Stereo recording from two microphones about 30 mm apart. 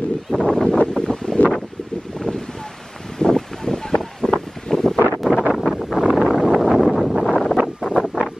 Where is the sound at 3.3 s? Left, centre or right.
Centre.